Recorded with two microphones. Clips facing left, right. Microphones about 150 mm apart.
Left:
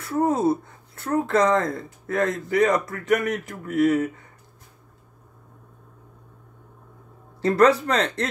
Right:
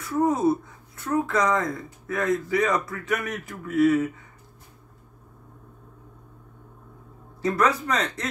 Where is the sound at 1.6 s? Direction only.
55° left (ahead or behind).